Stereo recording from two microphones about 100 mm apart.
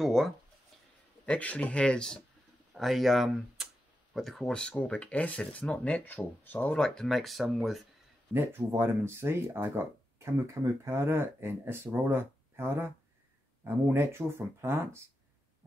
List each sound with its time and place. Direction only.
0.0 s a sound: centre (ahead or behind)
1.2 s speech: 15° left (ahead or behind)
6.8 s speech: 5° left (ahead or behind)
8.3 s speech: 25° right (ahead or behind)